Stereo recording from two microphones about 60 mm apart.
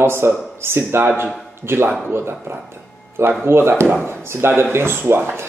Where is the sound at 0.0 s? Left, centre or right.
Right.